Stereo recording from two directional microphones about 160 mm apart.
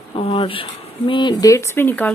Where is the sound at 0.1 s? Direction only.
35° left (ahead or behind).